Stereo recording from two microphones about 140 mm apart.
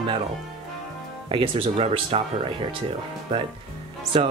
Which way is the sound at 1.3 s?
40° right (ahead or behind).